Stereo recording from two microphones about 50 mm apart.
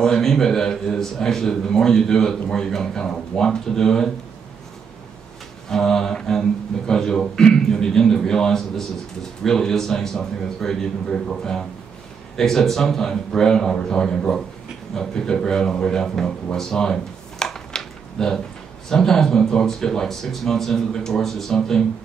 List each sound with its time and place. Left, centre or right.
0.0 s speech: centre
5.7 s speech: centre
16.5 s a sound: centre
18.9 s speech: centre